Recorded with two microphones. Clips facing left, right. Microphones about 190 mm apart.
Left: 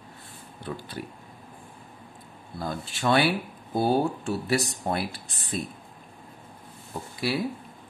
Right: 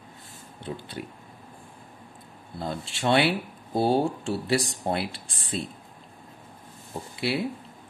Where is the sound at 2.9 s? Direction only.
25° right (ahead or behind).